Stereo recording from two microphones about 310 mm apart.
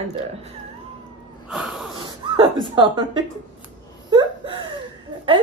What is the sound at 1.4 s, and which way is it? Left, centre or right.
Wheeze, centre.